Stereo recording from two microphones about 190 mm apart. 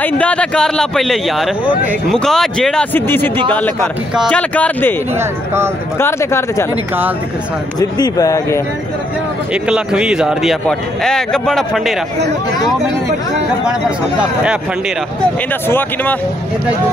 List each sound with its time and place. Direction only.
0.0 s speech: 5° left (ahead or behind)
5.9 s speech: 15° left (ahead or behind)
8.0 s speech: 20° left (ahead or behind)
9.5 s speech: 5° right (ahead or behind)